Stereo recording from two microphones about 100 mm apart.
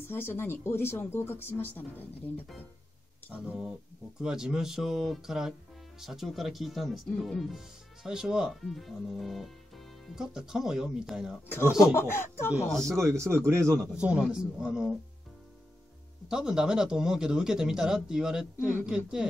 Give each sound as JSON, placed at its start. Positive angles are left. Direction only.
{"t": 0.0, "sound": "speech", "side_deg": 20}
{"t": 3.4, "sound": "a man's voice", "side_deg": -10}
{"t": 11.4, "sound": "speech", "side_deg": 25}
{"t": 12.6, "sound": "speech", "side_deg": 5}
{"t": 12.9, "sound": "speech", "side_deg": -30}
{"t": 13.9, "sound": "a man's voice", "side_deg": -10}
{"t": 16.3, "sound": "a man's voice", "side_deg": -5}
{"t": 18.6, "sound": "speech", "side_deg": 20}
{"t": 18.9, "sound": "a man's voice", "side_deg": -10}